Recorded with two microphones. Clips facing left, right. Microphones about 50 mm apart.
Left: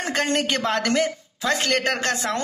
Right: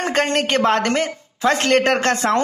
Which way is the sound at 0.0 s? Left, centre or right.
Right.